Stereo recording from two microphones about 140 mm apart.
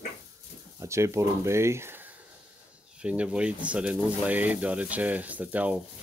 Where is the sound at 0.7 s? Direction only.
20° right (ahead or behind).